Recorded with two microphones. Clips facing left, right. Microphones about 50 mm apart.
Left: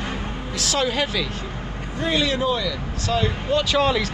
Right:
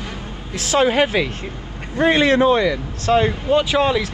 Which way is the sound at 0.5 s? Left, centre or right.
Right.